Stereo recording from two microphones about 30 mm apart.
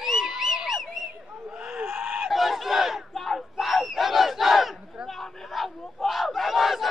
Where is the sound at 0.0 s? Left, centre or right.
Centre.